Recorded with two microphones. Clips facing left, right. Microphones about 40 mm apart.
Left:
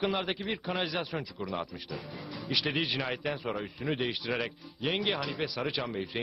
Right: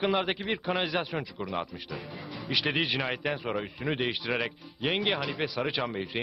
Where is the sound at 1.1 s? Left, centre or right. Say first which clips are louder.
Right 2 dB; centre.